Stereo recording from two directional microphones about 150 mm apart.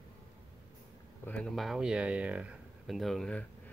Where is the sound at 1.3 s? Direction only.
5° left (ahead or behind).